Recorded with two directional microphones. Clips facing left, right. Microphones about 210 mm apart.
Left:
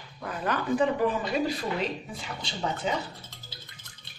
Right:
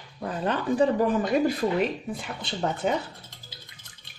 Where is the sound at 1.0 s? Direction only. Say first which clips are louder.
Right 4 dB; 50° right (ahead or behind).